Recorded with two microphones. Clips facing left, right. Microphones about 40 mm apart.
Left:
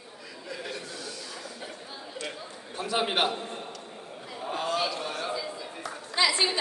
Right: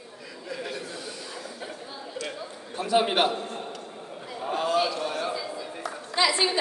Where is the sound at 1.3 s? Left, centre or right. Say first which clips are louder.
Right 3 dB; centre.